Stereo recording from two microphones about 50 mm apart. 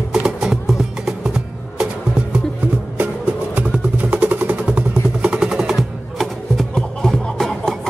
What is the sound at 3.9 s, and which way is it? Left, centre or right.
Vehicle, right.